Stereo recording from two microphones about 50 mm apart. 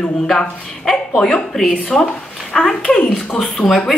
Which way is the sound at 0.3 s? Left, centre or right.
Centre.